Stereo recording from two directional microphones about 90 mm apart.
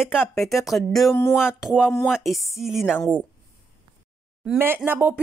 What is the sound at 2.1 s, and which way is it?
Speech, centre (ahead or behind).